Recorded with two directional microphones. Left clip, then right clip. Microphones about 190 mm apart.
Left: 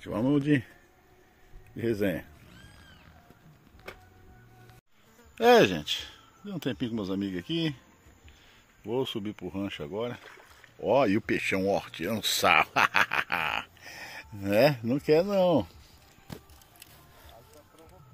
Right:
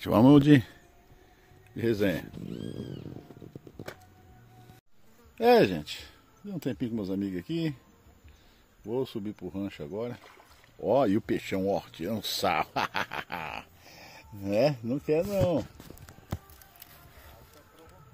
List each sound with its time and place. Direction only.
0.0 s a man's voice: 55° right (ahead or behind)
1.8 s speech: 15° right (ahead or behind)
5.4 s speech: 10° right (ahead or behind)
8.8 s speech: centre (ahead or behind)
10.8 s speech: 20° right (ahead or behind); by 15.6 s 25° left (ahead or behind)